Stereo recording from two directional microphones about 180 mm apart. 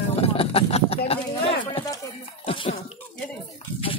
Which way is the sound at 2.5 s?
30° left (ahead or behind).